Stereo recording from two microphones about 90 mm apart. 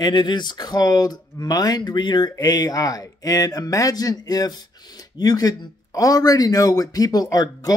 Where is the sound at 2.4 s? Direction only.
45° left (ahead or behind).